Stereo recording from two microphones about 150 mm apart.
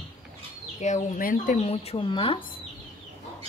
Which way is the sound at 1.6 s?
45° left (ahead or behind).